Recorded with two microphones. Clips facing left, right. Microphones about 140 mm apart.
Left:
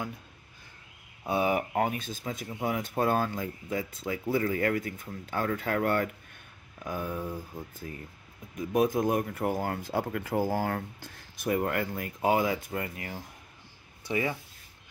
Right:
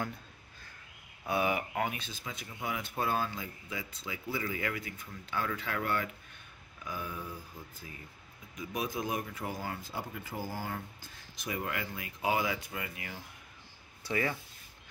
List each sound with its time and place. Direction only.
1.2 s speech: 30° left (ahead or behind)
14.0 s speech: 20° left (ahead or behind)